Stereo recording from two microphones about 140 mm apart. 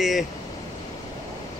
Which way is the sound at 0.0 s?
Centre (ahead or behind).